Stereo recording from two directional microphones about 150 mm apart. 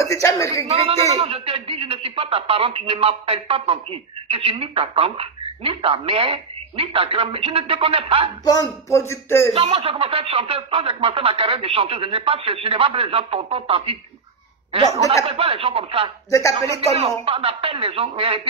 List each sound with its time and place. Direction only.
0.0 s speech: 20° left (ahead or behind)
0.7 s a man's voice: 40° right (ahead or behind)
8.5 s speech: 20° left (ahead or behind)
9.5 s a man's voice: 40° right (ahead or behind)
16.3 s speech: 20° left (ahead or behind)
17.2 s a man's voice: 40° right (ahead or behind)